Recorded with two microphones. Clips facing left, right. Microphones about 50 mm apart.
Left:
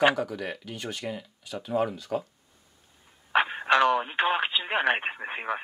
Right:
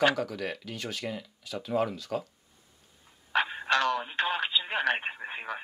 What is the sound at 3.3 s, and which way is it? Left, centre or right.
Speech, left.